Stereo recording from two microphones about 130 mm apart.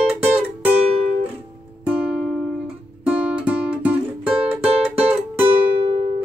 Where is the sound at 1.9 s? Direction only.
5° right (ahead or behind).